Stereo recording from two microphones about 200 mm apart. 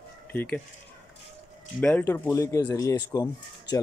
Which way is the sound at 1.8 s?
10° left (ahead or behind).